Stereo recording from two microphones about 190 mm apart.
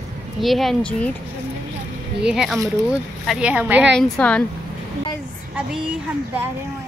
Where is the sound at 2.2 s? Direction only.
5° right (ahead or behind).